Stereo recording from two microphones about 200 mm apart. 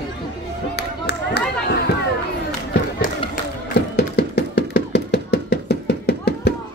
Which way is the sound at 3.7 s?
55° left (ahead or behind).